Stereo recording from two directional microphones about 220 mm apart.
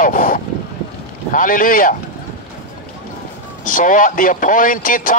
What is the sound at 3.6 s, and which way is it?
A man's voice, 35° left (ahead or behind).